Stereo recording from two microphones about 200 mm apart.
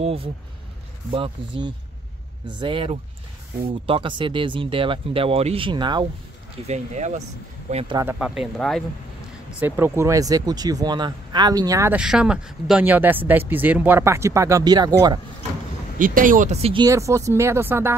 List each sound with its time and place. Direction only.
0.0 s speech: 30° right (ahead or behind)
6.7 s speech: 35° right (ahead or behind)
8.0 s speech: 10° right (ahead or behind)
9.6 s speech: 10° right (ahead or behind)
16.0 s speech: 40° right (ahead or behind)
16.8 s speech: 15° right (ahead or behind)